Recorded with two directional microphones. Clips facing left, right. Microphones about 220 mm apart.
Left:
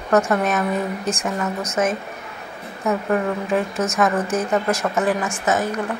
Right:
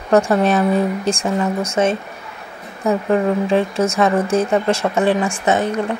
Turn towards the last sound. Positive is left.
turn(degrees=-30)  # may be behind; listen again after turning